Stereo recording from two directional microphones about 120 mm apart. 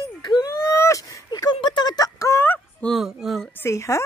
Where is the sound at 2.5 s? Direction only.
10° left (ahead or behind).